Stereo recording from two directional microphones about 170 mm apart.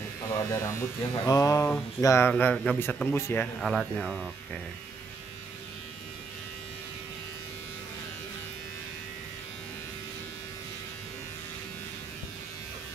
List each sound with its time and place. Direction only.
0.5 s a man's voice: 15° left (ahead or behind)
3.6 s speech: centre (ahead or behind)